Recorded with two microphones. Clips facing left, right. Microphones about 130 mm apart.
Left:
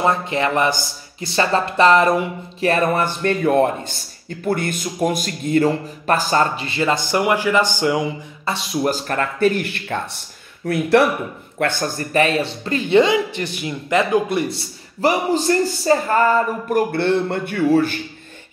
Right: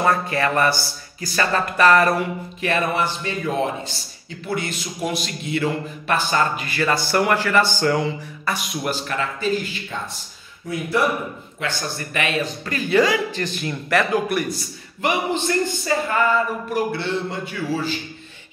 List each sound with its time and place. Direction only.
0.0 s speech: 20° left (ahead or behind)
2.6 s speech: 40° left (ahead or behind); by 8.6 s 25° left (ahead or behind)
8.8 s speech: 40° left (ahead or behind); by 10.2 s 60° left (ahead or behind)
10.7 s speech: 75° left (ahead or behind)
11.5 s a man's voice: 55° left (ahead or behind)
12.0 s speech: 35° left (ahead or behind)
15.0 s speech: 35° left (ahead or behind); by 17.9 s 55° left (ahead or behind)